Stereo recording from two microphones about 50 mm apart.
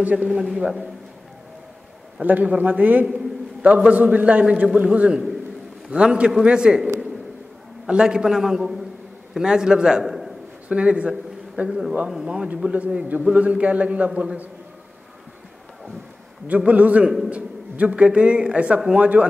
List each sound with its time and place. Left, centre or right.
0.0 s speech: right
0.3 s a man's voice: centre
0.6 s speech: right
2.2 s a man's voice: right
7.9 s a man's voice: centre
10.0 s a sound: centre
10.7 s a man's voice: right
12.7 s speech: right
16.4 s speech: right